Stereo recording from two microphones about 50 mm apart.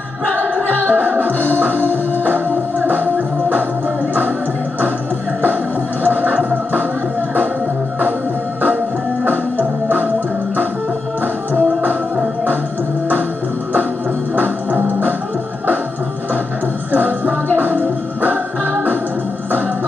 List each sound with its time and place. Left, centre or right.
1.0 s music: right
6.0 s music: right
9.6 s music: right
14.3 s music: right